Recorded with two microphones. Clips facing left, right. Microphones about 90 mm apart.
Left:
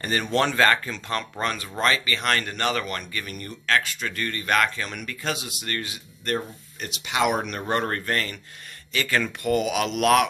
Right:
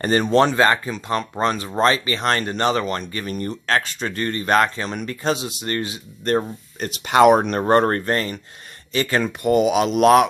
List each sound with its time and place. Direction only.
0.2 s speech: 25° right (ahead or behind)